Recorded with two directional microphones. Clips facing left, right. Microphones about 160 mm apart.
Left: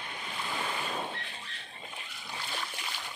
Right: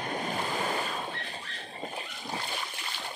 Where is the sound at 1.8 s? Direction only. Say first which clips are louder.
Right 9 dB; 40° right (ahead or behind).